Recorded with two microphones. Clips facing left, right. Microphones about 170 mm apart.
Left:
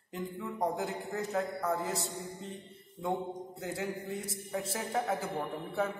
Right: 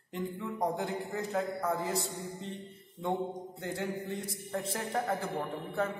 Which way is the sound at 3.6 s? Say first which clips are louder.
Right 1 dB; centre (ahead or behind).